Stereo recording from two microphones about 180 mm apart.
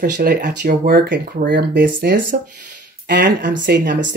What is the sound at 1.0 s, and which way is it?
Speech, 75° right (ahead or behind).